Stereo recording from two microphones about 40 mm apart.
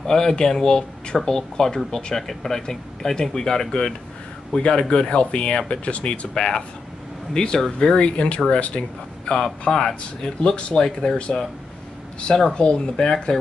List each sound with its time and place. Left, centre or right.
0.0 s speech: centre
2.1 s speech: centre; by 6.1 s left
6.3 s speech: centre
9.3 s speech: centre
12.5 s speech: left